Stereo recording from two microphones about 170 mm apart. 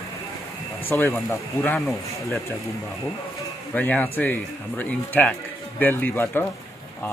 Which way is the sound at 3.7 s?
10° left (ahead or behind).